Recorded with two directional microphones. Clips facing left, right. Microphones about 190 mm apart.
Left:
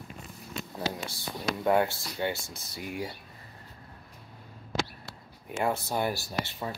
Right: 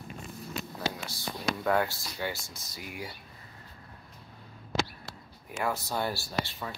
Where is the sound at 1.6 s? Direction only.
20° left (ahead or behind).